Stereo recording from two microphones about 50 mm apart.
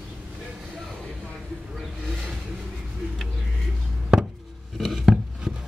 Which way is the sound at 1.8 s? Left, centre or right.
Centre.